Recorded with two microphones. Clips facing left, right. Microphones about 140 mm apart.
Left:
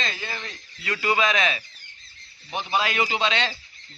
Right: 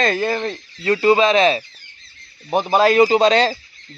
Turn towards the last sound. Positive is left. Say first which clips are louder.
# right 11 dB
turn(degrees=-40)  # may be behind; listen again after turning